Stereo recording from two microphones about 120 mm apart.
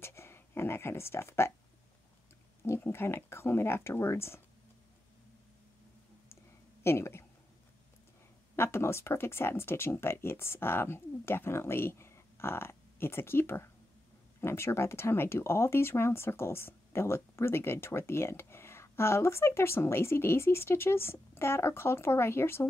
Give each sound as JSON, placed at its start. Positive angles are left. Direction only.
{"t": 0.0, "sound": "speech", "side_deg": 20}
{"t": 2.6, "sound": "speech", "side_deg": 20}
{"t": 6.8, "sound": "speech", "side_deg": 20}
{"t": 8.5, "sound": "speech", "side_deg": 20}